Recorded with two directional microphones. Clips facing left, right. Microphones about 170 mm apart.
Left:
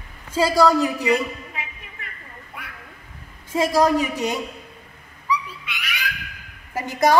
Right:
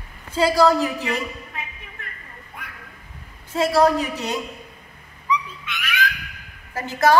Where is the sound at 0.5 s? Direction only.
10° left (ahead or behind).